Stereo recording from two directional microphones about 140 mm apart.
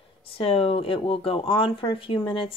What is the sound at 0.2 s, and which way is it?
Speech, 40° left (ahead or behind).